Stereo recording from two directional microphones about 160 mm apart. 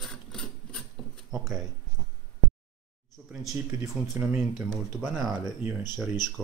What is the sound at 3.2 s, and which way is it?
Speech, 10° right (ahead or behind).